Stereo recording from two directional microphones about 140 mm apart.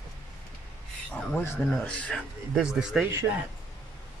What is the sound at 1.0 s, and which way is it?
Speech, 10° left (ahead or behind).